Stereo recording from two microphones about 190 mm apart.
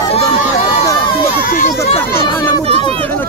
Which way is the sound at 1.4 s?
50° left (ahead or behind).